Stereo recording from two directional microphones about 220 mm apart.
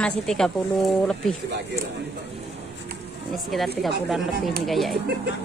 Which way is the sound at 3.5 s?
Centre (ahead or behind).